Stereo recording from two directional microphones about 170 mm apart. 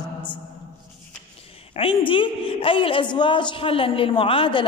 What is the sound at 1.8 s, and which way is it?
A woman's voice, 30° left (ahead or behind).